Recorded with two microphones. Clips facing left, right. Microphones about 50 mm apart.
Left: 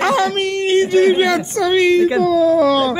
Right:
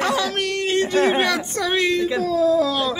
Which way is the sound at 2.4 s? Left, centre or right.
Left.